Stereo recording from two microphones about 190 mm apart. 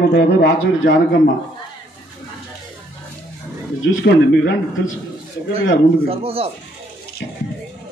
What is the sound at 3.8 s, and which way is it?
Speech, 60° left (ahead or behind).